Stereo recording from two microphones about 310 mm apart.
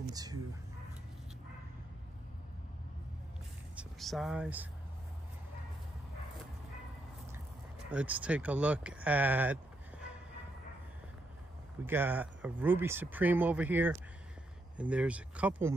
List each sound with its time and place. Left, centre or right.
0.1 s speech: centre
3.7 s speech: centre
7.9 s speech: centre
11.8 s speech: centre